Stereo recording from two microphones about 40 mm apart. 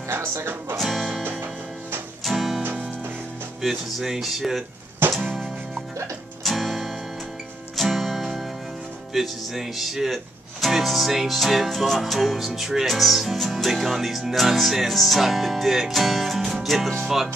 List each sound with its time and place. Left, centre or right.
0.1 s speech: right
0.7 s music: centre
2.2 s music: centre
3.6 s speech: centre
5.0 s music: right
6.4 s music: centre
9.1 s speech: centre
12.4 s music: centre
12.8 s speech: centre